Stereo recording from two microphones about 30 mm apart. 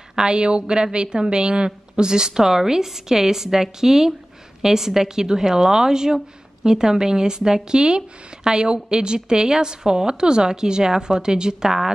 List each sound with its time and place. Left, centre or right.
0.1 s a woman's voice: right